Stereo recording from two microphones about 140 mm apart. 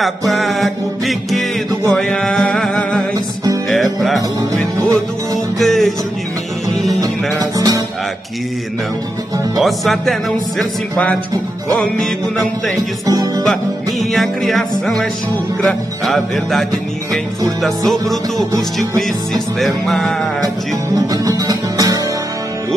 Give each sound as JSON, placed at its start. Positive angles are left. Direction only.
{"t": 0.3, "sound": "music", "side_deg": 0}
{"t": 4.7, "sound": "music", "side_deg": -20}
{"t": 5.6, "sound": "music", "side_deg": 0}
{"t": 7.3, "sound": "music", "side_deg": -25}
{"t": 9.6, "sound": "music", "side_deg": 0}
{"t": 10.6, "sound": "speech", "side_deg": 10}
{"t": 13.0, "sound": "speech", "side_deg": -25}
{"t": 14.1, "sound": "music", "side_deg": 0}
{"t": 20.9, "sound": "music", "side_deg": -25}